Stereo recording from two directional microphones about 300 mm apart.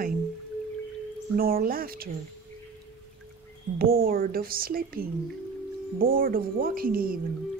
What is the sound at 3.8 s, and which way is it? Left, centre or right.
Speech, right.